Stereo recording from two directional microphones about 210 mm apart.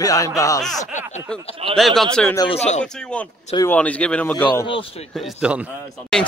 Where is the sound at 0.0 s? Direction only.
15° left (ahead or behind).